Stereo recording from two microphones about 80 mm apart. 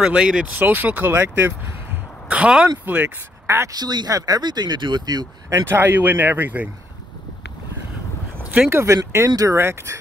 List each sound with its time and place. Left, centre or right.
0.0 s speech: centre
0.6 s speech: right
2.2 s speech: centre
3.4 s a woman's voice: right
3.7 s speech: right
5.7 s speech: right
8.6 s speech: right
9.6 s speech: right